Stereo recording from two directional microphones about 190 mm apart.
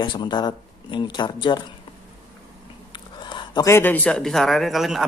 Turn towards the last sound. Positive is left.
turn(degrees=0)  # may be behind; listen again after turning